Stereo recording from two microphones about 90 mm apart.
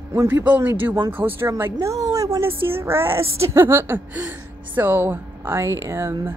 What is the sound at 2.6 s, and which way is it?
A woman's voice, 25° right (ahead or behind).